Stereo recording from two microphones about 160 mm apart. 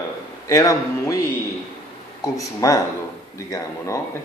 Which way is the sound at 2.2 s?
20° left (ahead or behind).